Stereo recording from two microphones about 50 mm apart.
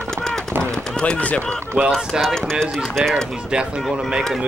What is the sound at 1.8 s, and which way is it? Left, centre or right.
Speech, right.